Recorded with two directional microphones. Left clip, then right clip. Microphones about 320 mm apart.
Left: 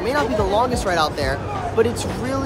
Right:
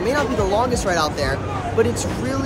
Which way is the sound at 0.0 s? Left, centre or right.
Centre.